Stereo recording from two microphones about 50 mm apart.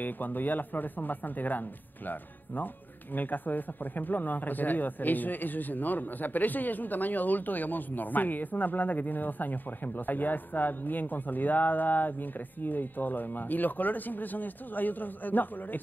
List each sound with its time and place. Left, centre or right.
0.0 s speech: left